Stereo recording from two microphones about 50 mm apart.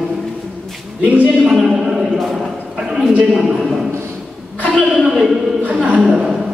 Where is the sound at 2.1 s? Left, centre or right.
Centre.